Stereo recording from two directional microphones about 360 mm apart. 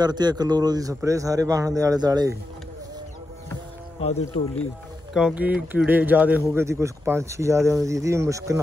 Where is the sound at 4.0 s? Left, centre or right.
Centre.